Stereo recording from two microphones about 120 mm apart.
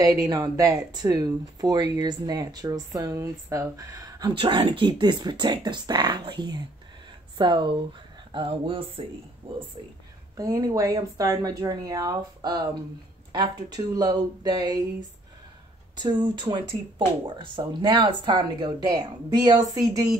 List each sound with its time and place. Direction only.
0.0 s speech: 30° right (ahead or behind)
4.4 s speech: 45° right (ahead or behind)
10.3 s speech: 30° right (ahead or behind)
16.0 s speech: 40° right (ahead or behind)